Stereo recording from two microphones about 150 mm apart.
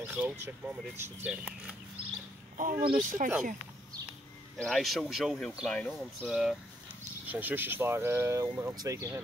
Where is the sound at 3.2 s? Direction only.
55° right (ahead or behind).